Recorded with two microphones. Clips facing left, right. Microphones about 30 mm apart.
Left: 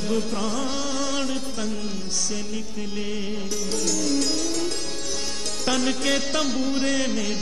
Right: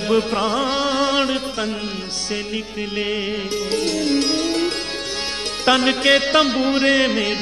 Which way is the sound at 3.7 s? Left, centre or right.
Right.